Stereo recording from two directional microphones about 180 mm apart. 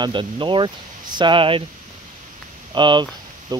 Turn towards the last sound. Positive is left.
turn(degrees=-20)  # may be behind; listen again after turning